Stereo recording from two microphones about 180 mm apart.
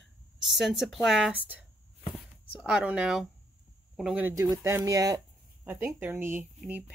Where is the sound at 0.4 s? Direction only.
Centre (ahead or behind); by 5.2 s 20° right (ahead or behind).